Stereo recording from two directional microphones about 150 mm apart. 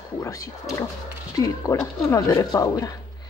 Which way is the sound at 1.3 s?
20° left (ahead or behind).